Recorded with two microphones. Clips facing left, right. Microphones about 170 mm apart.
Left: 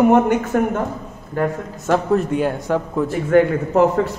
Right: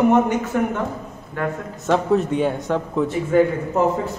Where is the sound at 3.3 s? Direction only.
70° left (ahead or behind).